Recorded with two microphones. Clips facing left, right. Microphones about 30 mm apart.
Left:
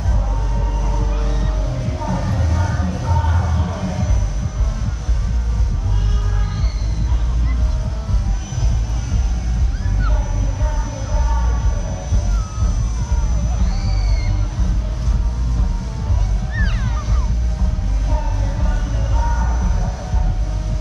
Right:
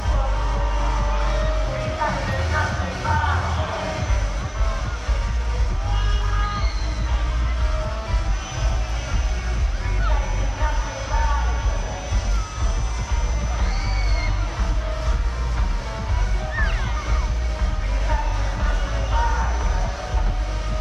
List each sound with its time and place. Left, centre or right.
0.7 s music: right
1.0 s music: right
3.2 s music: right
18.0 s music: right